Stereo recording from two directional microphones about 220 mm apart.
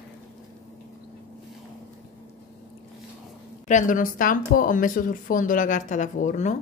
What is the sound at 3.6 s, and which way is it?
Speech, 35° left (ahead or behind).